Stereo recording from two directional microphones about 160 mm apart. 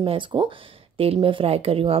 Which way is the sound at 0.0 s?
30° right (ahead or behind).